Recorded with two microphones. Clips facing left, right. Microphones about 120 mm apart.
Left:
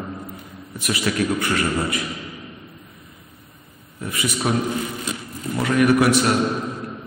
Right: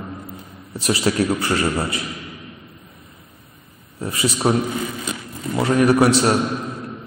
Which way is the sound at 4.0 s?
30° right (ahead or behind).